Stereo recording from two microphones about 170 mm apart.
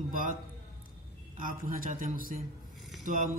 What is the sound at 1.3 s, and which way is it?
Mantra, 55° right (ahead or behind).